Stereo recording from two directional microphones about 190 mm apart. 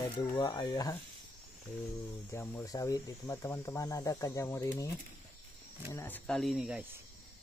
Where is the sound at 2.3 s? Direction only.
15° left (ahead or behind).